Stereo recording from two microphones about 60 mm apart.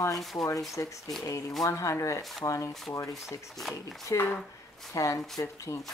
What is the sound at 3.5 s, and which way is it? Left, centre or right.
Speech, centre.